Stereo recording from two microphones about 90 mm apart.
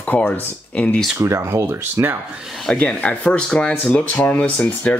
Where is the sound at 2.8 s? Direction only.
15° left (ahead or behind).